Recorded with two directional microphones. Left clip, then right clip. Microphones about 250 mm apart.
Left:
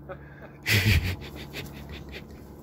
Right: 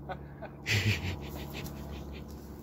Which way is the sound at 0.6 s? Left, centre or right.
Left.